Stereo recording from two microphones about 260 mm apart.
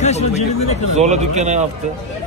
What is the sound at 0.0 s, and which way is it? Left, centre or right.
Speech, left.